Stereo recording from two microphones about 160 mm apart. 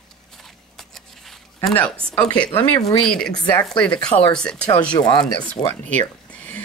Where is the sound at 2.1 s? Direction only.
5° left (ahead or behind).